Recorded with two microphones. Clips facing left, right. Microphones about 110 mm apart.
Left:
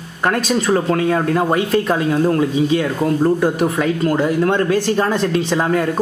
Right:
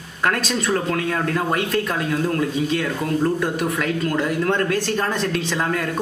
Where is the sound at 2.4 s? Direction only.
15° left (ahead or behind).